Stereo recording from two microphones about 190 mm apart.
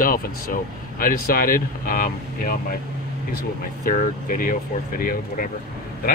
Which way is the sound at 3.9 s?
45° left (ahead or behind).